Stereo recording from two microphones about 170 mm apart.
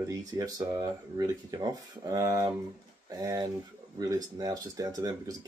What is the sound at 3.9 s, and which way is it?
Speech, 20° right (ahead or behind).